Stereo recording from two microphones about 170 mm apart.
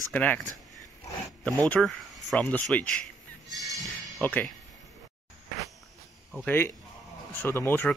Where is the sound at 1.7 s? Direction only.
5° left (ahead or behind).